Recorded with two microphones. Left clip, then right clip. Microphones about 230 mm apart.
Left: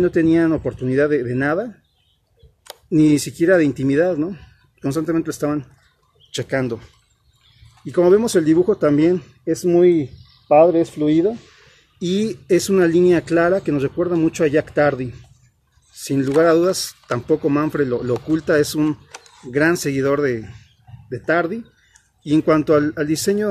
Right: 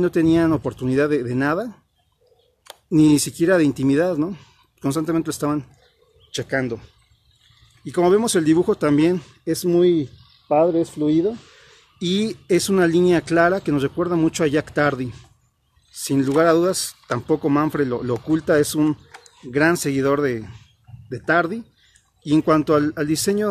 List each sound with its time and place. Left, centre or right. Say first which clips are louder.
0.0 s speech: left 2 dB; right
2.9 s speech: even; right
6.3 s speech: left 2 dB; centre
7.8 s speech: left 3 dB; centre